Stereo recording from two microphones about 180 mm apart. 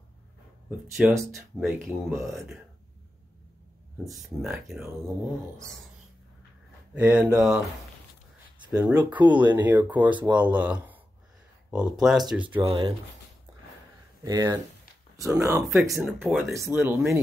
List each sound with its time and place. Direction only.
0.7 s speech: centre (ahead or behind)
1.6 s speech: 10° right (ahead or behind)
4.0 s speech: centre (ahead or behind)
6.9 s speech: 10° right (ahead or behind)
8.7 s speech: 10° right (ahead or behind)
12.5 s speech: 30° right (ahead or behind)
14.2 s speech: 20° right (ahead or behind)
16.1 s speech: centre (ahead or behind)
16.5 s speech: 15° right (ahead or behind)